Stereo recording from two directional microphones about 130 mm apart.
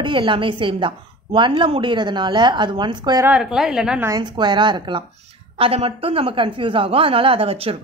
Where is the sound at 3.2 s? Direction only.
5° right (ahead or behind).